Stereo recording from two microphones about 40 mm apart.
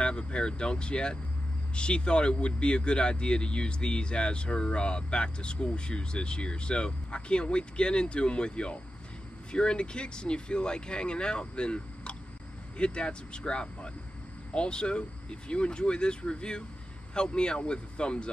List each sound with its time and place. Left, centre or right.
0.0 s speech: left